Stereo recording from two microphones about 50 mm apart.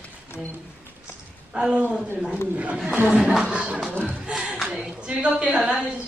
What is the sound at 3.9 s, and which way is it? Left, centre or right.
Speech, left.